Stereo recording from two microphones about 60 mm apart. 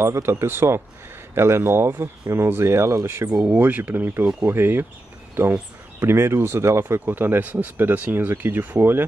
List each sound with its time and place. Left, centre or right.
0.0 s speech: right
3.5 s speech: right